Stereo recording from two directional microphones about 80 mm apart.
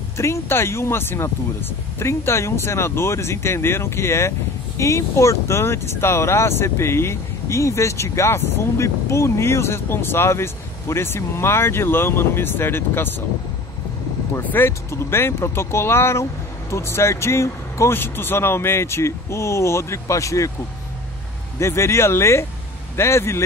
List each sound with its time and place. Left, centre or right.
0.2 s speech: left
14.3 s speech: left
21.5 s speech: left